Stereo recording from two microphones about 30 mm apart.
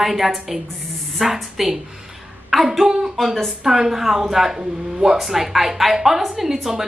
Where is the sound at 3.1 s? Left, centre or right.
Centre.